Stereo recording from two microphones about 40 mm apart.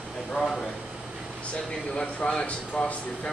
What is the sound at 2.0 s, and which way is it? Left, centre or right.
Speech, centre.